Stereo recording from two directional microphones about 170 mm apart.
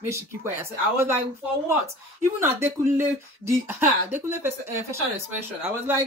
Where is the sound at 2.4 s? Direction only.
15° right (ahead or behind).